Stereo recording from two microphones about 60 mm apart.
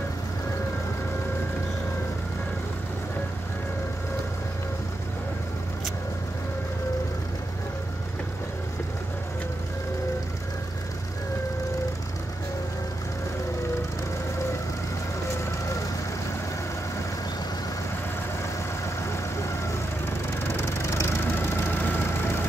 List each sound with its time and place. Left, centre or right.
20.1 s vehicle: left
20.6 s vehicle: left
21.4 s vehicle: left